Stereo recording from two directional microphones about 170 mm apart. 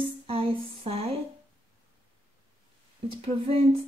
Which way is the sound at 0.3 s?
35° right (ahead or behind).